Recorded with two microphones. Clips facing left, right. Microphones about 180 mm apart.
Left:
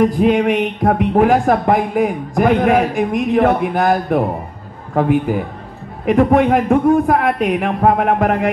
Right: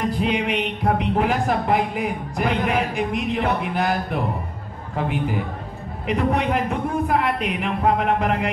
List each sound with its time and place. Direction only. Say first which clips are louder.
0.2 s speech: left 9 dB; 50° left (ahead or behind)
6.0 s speech: left 9 dB; 50° left (ahead or behind)